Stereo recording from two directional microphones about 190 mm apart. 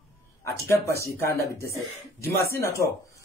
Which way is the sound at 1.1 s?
15° left (ahead or behind).